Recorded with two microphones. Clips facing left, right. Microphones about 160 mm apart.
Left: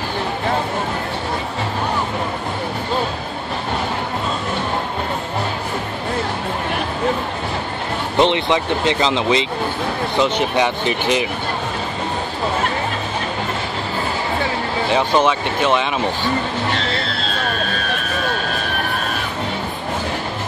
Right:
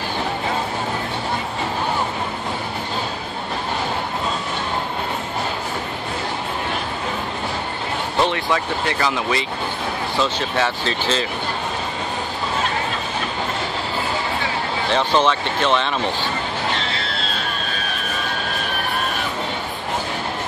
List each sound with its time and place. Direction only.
8.2 s speech: 20° left (ahead or behind)
14.9 s speech: 10° left (ahead or behind)